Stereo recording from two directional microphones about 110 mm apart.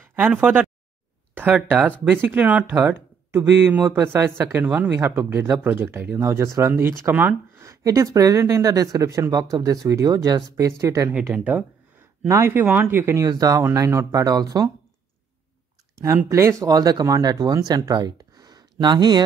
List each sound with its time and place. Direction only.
0.1 s speech: 15° right (ahead or behind)
4.6 s speech: 10° right (ahead or behind)
7.6 s speech: 30° right (ahead or behind)
11.3 s speech: 15° right (ahead or behind)
12.3 s speech: 25° right (ahead or behind)
16.3 s speech: 25° right (ahead or behind)